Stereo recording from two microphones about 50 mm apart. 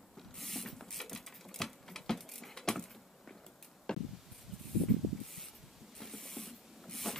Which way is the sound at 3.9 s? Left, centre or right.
Centre.